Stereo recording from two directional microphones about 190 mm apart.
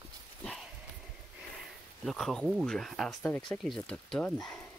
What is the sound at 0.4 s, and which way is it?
Dog, centre (ahead or behind).